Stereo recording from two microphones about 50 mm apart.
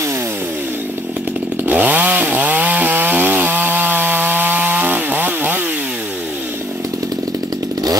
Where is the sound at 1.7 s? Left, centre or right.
Right.